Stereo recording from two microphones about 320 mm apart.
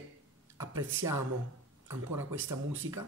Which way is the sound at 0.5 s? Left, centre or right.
Centre.